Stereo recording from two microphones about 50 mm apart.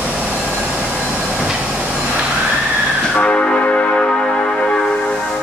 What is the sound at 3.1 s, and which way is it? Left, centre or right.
Music, left.